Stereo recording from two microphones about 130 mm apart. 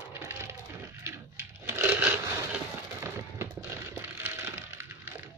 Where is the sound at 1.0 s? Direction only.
20° right (ahead or behind).